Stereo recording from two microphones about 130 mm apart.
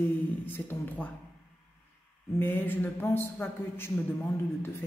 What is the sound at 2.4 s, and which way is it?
Speech, 15° left (ahead or behind).